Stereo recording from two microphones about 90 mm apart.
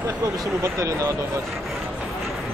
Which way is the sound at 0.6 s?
30° right (ahead or behind).